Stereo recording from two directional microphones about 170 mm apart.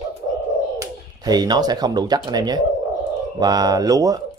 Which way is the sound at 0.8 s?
25° right (ahead or behind).